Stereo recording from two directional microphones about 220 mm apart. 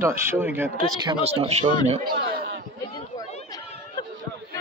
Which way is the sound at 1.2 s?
25° right (ahead or behind).